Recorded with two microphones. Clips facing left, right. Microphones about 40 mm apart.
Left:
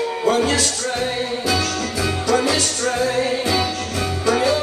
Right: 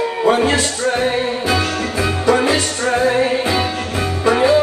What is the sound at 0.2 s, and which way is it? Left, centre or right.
Speech, right.